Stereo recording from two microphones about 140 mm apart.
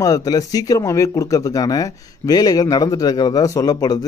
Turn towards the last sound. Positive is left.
turn(degrees=30)  # may be behind; listen again after turning